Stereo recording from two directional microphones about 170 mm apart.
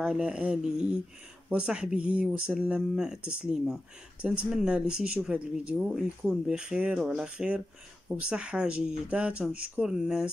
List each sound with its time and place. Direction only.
0.0 s speech: 5° right (ahead or behind)